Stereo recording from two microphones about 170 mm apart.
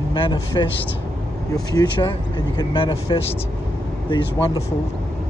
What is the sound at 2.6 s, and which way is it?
Speech, 30° left (ahead or behind).